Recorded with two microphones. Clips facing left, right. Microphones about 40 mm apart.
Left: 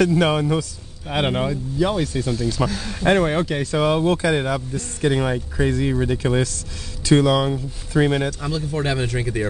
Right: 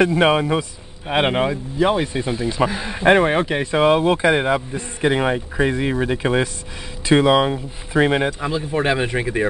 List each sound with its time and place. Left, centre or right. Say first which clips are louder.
0.0 s speech: right 2 dB; right